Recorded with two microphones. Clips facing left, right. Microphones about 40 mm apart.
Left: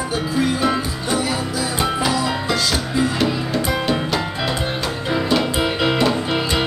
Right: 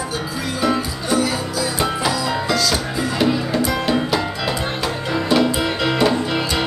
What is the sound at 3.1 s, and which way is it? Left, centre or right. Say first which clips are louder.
Music: right 2 dB; centre.